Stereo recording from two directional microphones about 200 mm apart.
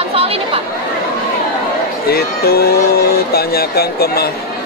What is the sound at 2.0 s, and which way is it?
Speech, 50° left (ahead or behind).